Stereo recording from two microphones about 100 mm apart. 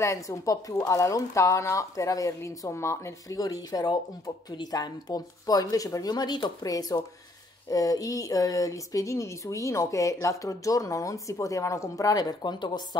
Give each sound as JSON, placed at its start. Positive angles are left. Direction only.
{"t": 0.0, "sound": "speech", "side_deg": 30}